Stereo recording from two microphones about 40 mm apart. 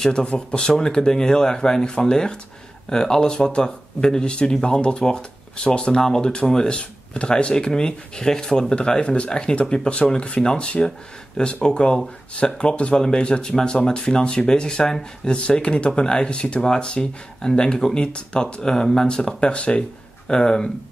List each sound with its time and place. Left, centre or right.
0.0 s speech: left
6.8 s speech: left
10.2 s speech: left
10.5 s speech: left
20.2 s speech: centre